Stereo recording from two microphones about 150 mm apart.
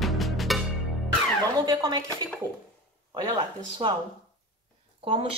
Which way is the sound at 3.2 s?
30° right (ahead or behind).